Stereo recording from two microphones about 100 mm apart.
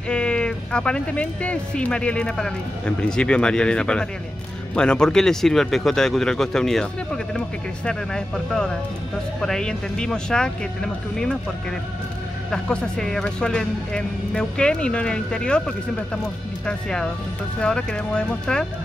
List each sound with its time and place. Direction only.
0.1 s speech: 10° left (ahead or behind)
12.4 s speech: 5° left (ahead or behind)